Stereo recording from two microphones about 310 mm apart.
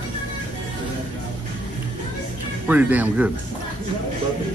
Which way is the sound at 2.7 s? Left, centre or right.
Centre.